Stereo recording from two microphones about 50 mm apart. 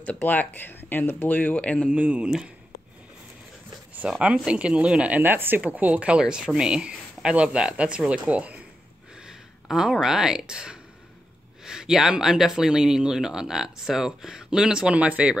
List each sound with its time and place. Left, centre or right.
0.2 s speech: left
1.9 s speech: right
2.2 s speech: centre
4.0 s speech: centre
5.1 s speech: right
5.6 s speech: right
5.9 s speech: right
9.1 s speech: centre
14.9 s speech: right